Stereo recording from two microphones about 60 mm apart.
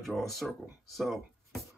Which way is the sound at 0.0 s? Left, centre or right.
Centre.